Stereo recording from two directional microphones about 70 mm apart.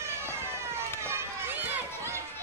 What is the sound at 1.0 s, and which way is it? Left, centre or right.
Run, right.